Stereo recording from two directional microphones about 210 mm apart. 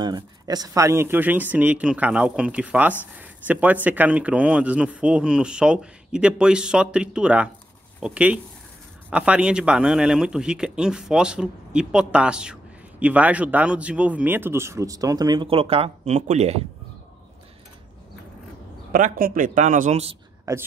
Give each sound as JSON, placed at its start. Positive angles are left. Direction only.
{"t": 0.0, "sound": "speech", "side_deg": -20}
{"t": 18.9, "sound": "speech", "side_deg": -40}
{"t": 20.5, "sound": "speech", "side_deg": -15}